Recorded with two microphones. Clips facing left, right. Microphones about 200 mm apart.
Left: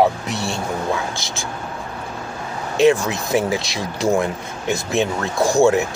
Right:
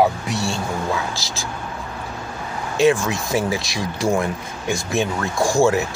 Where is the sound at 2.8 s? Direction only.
20° left (ahead or behind).